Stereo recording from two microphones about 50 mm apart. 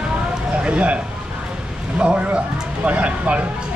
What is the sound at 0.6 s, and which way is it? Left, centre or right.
Speech, right.